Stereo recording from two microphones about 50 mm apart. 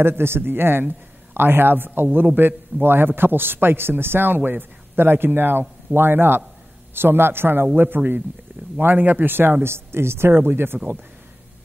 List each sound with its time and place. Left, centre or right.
0.0 s a man's voice: right